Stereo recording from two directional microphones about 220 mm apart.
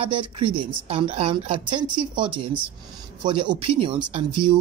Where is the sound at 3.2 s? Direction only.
20° right (ahead or behind).